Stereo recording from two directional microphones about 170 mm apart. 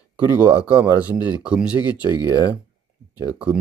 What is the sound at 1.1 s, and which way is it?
Speech, 10° right (ahead or behind).